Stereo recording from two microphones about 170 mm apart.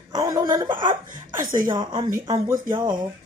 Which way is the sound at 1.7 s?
25° right (ahead or behind).